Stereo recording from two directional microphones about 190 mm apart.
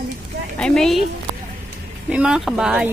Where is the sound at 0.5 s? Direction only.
5° left (ahead or behind).